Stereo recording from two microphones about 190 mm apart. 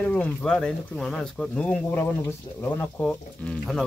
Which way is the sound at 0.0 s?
5° left (ahead or behind).